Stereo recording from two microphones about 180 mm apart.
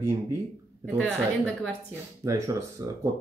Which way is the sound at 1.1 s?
5° left (ahead or behind).